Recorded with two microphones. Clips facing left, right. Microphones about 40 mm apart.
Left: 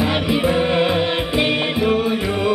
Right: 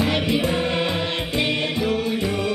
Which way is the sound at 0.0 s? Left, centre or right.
Centre.